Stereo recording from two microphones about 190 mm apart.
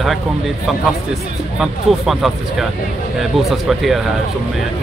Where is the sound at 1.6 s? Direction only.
Centre (ahead or behind).